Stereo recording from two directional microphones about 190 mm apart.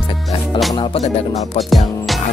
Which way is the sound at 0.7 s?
30° left (ahead or behind).